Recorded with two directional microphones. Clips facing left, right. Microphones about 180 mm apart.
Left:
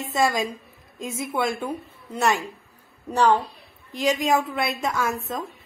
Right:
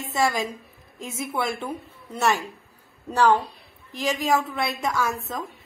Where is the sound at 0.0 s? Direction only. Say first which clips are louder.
Left 1 dB; 20° left (ahead or behind).